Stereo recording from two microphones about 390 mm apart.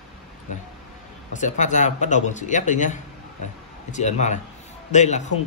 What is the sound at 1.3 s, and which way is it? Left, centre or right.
A man's voice, centre.